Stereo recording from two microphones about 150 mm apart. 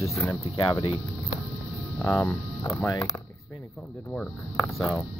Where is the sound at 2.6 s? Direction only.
20° left (ahead or behind).